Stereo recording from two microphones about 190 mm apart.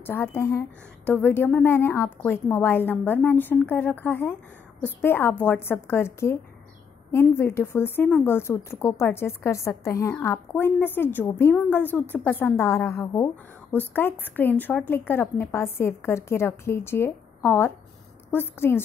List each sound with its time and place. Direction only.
0.0 s a woman's voice: 10° left (ahead or behind)